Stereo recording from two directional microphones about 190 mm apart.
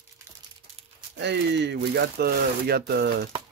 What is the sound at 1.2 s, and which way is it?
Speech, 65° right (ahead or behind).